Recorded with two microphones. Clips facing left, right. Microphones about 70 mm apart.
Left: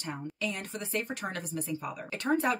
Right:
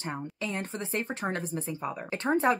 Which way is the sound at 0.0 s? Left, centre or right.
Right.